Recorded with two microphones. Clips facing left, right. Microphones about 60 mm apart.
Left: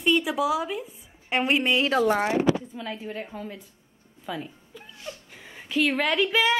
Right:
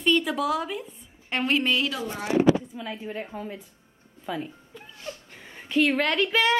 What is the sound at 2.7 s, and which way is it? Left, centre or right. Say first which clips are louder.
Speech: even; centre.